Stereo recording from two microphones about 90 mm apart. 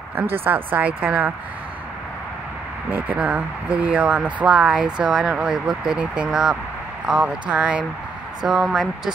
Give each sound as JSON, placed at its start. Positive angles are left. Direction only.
{"t": 0.2, "sound": "speech", "side_deg": -25}
{"t": 2.9, "sound": "speech", "side_deg": -20}
{"t": 8.5, "sound": "speech", "side_deg": 0}